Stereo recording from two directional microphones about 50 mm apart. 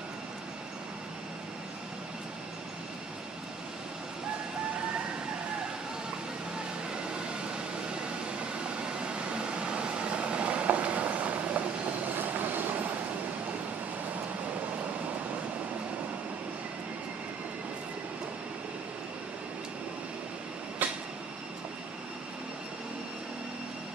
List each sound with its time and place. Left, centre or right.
6.9 s vehicle: centre
12.2 s train: right
20.8 s train: right